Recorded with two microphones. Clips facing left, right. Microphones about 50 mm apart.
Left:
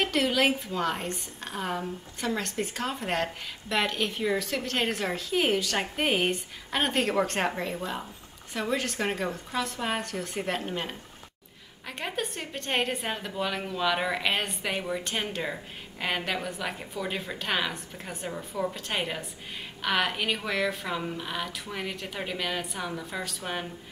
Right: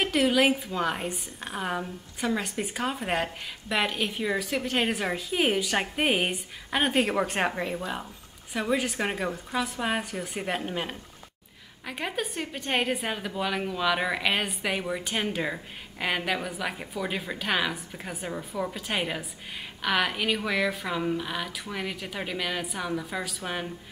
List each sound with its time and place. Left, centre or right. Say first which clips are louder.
0.0 s a woman's voice: right 2 dB; centre